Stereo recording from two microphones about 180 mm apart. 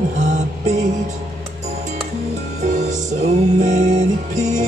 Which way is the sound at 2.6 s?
40° right (ahead or behind).